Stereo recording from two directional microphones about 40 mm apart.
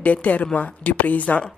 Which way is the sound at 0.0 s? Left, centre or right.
Left.